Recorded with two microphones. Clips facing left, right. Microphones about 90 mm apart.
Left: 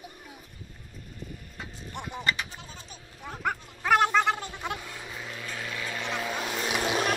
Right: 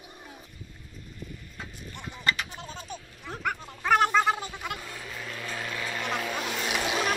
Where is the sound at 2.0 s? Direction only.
60° left (ahead or behind).